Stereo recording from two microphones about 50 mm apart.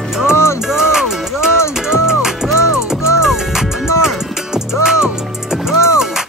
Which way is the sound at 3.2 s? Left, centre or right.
Centre.